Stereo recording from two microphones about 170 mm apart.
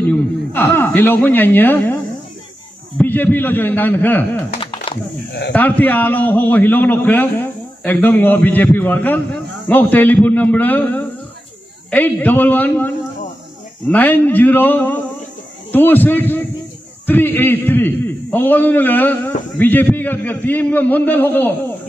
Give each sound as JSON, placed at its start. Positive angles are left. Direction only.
{"t": 0.1, "sound": "speech", "side_deg": 10}
{"t": 3.0, "sound": "a man's voice", "side_deg": 10}
{"t": 4.6, "sound": "a sound", "side_deg": 35}
{"t": 5.5, "sound": "a man's voice", "side_deg": 10}